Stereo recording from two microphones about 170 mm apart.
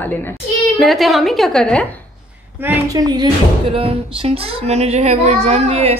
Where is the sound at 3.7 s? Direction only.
35° right (ahead or behind).